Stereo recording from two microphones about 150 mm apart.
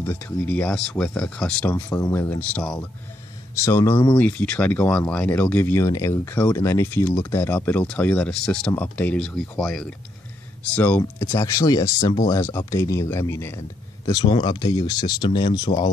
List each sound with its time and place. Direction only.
0.0 s speech: 15° left (ahead or behind)
3.5 s speech: 20° left (ahead or behind)
3.9 s speech: 35° left (ahead or behind)
4.2 s speech: 10° left (ahead or behind); by 15.9 s 35° left (ahead or behind)